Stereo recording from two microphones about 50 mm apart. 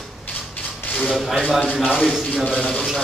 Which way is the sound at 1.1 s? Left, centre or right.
Centre.